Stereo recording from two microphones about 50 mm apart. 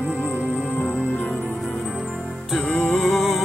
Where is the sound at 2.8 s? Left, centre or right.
Centre.